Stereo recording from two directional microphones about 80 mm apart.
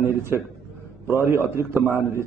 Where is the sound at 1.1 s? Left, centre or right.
Right.